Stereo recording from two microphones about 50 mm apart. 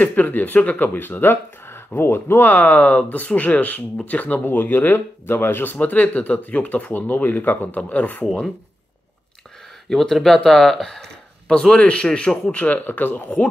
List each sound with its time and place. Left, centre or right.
0.0 s speech: left
5.8 s speech: left
9.8 s speech: centre; by 12.7 s left
12.7 s speech: left